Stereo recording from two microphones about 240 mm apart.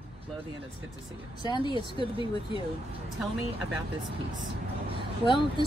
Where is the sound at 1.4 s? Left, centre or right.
Centre.